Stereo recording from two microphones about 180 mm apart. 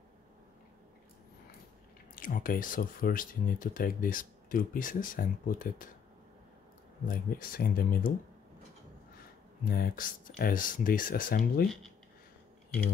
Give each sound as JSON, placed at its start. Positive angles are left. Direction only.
{"t": 2.1, "sound": "speech", "side_deg": 50}
{"t": 7.1, "sound": "speech", "side_deg": 55}
{"t": 9.7, "sound": "speech", "side_deg": 55}